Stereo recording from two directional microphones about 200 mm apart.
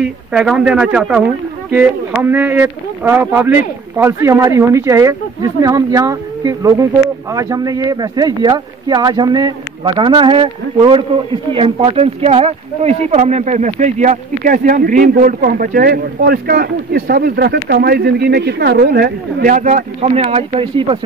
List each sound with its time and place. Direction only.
0.0 s speech: 5° right (ahead or behind); by 21.0 s 25° right (ahead or behind)